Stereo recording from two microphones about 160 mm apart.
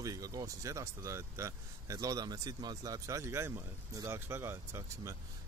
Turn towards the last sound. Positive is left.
turn(degrees=-15)  # may be behind; listen again after turning